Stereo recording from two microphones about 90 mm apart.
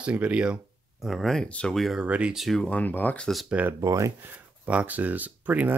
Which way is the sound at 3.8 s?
35° right (ahead or behind).